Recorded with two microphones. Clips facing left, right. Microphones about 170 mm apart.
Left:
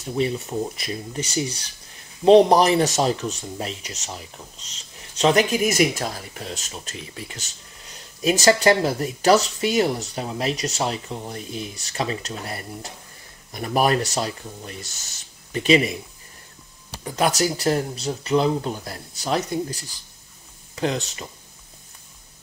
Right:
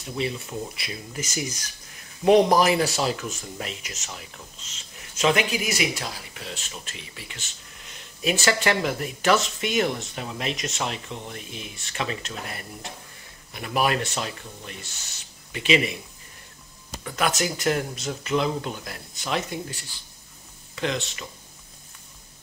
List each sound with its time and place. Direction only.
0.0 s speech: 40° left (ahead or behind)
16.9 s speech: 30° left (ahead or behind)